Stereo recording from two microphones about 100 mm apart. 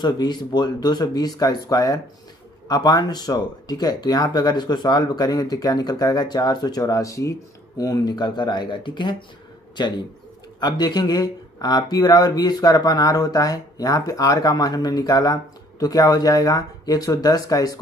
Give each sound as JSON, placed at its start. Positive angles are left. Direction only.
{"t": 0.0, "sound": "speech", "side_deg": 45}